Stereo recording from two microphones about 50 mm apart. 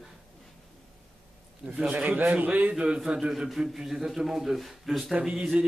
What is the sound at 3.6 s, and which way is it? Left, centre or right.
Speech, centre.